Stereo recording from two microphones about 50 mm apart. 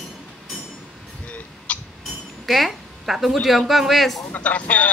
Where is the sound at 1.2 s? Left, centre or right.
Left.